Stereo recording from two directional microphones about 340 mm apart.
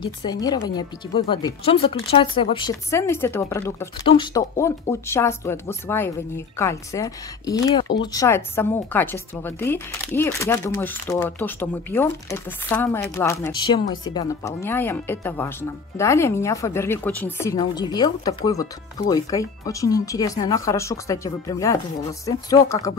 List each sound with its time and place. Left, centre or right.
0.0 s a woman's voice: centre